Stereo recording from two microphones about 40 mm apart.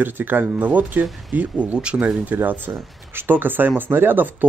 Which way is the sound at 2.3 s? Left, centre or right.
Right.